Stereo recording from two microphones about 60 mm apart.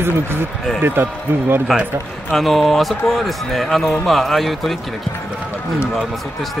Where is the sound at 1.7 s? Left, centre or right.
Centre.